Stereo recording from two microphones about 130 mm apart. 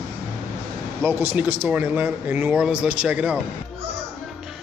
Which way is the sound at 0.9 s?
20° right (ahead or behind).